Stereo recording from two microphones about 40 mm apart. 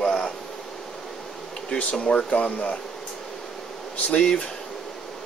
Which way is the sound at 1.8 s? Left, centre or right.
Left.